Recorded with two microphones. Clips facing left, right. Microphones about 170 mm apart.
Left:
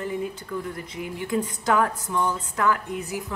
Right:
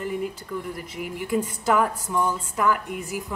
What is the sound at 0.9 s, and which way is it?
A woman's voice, 10° right (ahead or behind).